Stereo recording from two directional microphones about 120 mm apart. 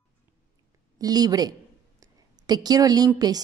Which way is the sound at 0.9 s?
30° right (ahead or behind).